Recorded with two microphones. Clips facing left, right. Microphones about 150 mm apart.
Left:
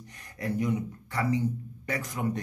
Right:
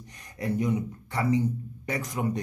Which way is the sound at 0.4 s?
20° right (ahead or behind).